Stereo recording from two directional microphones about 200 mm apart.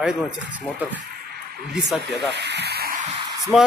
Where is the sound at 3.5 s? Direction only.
Centre (ahead or behind).